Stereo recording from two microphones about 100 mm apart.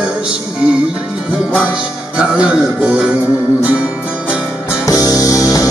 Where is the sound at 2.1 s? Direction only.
10° right (ahead or behind).